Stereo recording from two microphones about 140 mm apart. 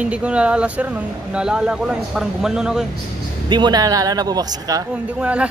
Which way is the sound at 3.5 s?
30° right (ahead or behind).